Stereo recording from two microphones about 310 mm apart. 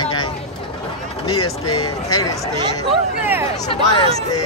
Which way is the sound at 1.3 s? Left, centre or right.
Left.